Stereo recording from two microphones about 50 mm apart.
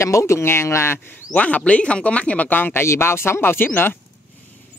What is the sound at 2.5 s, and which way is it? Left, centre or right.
Speech, left.